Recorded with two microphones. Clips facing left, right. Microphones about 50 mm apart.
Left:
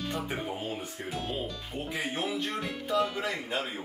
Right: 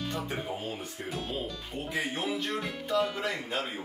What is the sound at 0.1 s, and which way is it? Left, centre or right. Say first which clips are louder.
Speech: left 1 dB; centre.